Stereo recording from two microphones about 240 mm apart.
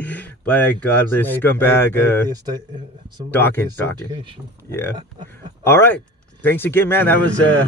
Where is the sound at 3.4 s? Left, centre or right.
Centre.